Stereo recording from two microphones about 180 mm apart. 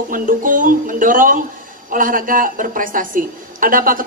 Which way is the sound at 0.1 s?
50° right (ahead or behind).